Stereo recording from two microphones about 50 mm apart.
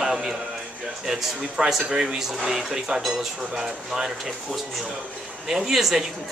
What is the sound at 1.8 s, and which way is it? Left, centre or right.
Speech, centre.